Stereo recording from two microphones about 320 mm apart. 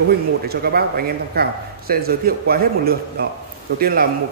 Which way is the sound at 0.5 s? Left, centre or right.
Right.